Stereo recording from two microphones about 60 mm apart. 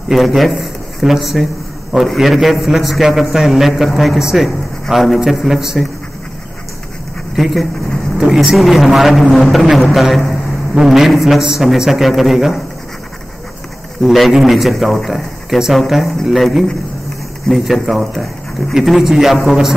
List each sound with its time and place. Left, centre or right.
0.1 s a man's voice: centre
7.3 s a man's voice: centre
13.9 s a man's voice: centre